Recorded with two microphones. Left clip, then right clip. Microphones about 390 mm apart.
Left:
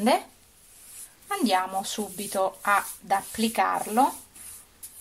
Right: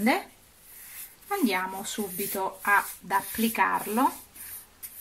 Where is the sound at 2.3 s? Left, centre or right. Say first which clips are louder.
Left 1 dB; left.